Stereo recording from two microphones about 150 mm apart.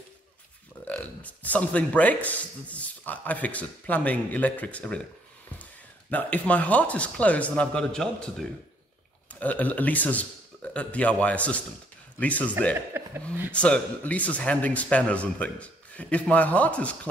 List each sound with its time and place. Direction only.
0.8 s a man's voice: 10° left (ahead or behind)
12.9 s a sound: 15° right (ahead or behind)
13.5 s a man's voice: 10° left (ahead or behind)